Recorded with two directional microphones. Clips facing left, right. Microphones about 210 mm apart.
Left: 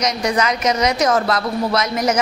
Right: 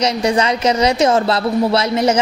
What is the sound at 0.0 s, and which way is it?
Speech, 30° right (ahead or behind).